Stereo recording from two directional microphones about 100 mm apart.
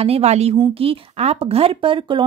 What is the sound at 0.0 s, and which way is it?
A woman's voice, 90° right.